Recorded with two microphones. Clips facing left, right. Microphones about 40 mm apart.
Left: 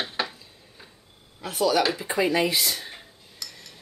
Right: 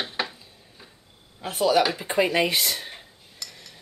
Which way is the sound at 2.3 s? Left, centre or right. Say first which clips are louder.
Right 1 dB; right.